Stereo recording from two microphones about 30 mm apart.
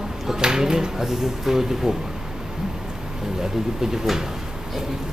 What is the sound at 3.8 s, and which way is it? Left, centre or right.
Speech, centre.